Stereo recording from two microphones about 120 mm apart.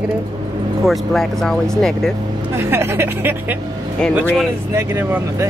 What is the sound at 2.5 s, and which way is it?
Speech, 20° right (ahead or behind).